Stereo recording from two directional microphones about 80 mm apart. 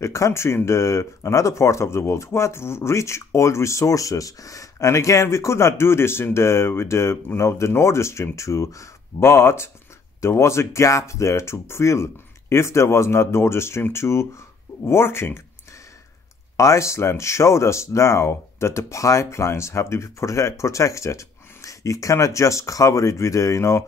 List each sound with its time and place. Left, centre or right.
0.0 s speech: left
16.5 s speech: left